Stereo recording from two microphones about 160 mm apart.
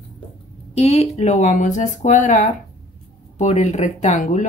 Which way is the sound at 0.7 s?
40° left (ahead or behind).